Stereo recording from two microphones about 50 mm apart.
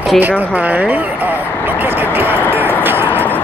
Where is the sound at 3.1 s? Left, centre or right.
Left.